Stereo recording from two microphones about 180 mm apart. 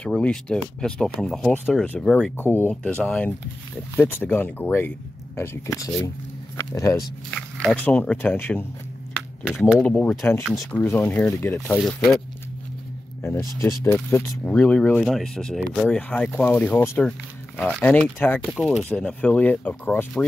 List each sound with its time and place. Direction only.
0.0 s speech: 5° left (ahead or behind)
7.2 s speech: 5° left (ahead or behind)
11.8 s speech: centre (ahead or behind)
13.2 s speech: 15° left (ahead or behind)